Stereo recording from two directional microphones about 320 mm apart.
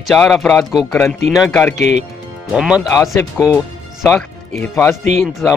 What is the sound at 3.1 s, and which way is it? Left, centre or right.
Speech, centre.